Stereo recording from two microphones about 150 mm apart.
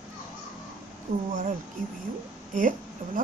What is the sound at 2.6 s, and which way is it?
Speech, 65° right (ahead or behind).